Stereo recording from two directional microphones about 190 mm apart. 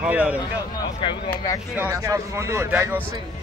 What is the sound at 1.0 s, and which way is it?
Speech, 25° left (ahead or behind).